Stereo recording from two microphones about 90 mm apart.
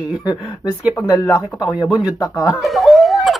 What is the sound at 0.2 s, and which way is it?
Child singing, 50° left (ahead or behind).